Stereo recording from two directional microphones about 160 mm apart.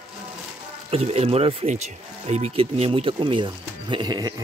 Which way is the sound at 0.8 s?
40° right (ahead or behind).